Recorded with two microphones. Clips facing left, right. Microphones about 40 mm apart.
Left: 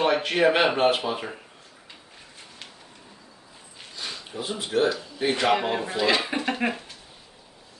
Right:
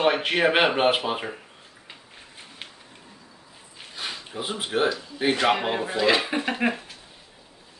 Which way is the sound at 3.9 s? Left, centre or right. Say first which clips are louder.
Right 1 dB; right.